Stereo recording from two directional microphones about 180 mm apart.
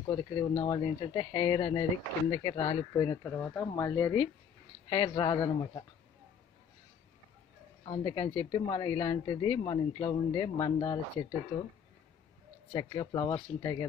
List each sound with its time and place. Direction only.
0.1 s speech: 25° left (ahead or behind)
3.3 s speech: 10° left (ahead or behind)
7.8 s speech: 25° left (ahead or behind)
12.7 s speech: 25° left (ahead or behind)